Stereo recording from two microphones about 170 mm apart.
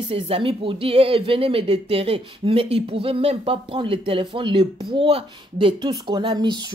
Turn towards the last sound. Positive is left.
turn(degrees=-25)  # may be behind; listen again after turning